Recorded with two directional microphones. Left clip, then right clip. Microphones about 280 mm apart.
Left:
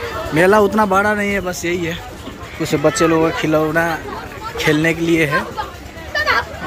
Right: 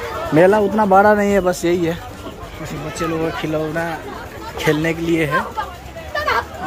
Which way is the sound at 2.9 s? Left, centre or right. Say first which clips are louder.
Left 7 dB; centre.